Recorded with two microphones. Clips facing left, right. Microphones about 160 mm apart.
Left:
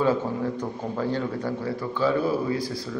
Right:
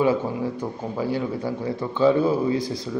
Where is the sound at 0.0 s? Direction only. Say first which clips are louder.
Right 2 dB; 10° right (ahead or behind).